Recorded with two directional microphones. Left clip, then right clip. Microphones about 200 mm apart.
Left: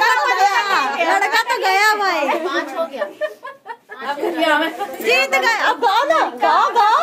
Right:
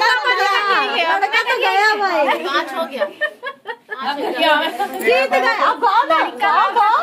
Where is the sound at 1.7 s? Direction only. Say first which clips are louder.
Left 2 dB; 20° left (ahead or behind).